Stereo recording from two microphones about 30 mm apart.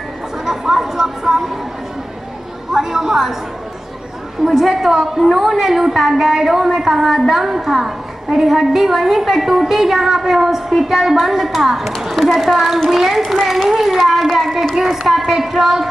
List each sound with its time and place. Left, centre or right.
0.5 s a sound: centre
2.7 s a woman's voice: centre
4.5 s a woman's voice: centre
15.2 s a woman's voice: centre